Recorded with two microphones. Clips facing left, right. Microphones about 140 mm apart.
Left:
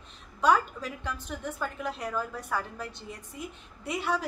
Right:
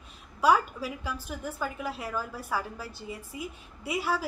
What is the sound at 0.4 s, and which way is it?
A woman's voice, 5° right (ahead or behind).